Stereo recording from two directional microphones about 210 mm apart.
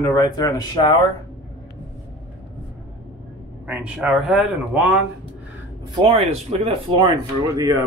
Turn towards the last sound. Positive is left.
turn(degrees=-15)  # may be behind; listen again after turning